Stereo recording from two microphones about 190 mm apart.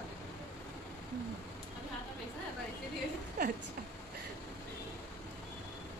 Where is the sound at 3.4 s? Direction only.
50° right (ahead or behind).